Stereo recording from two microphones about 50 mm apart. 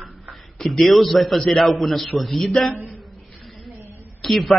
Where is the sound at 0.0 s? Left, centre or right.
Centre.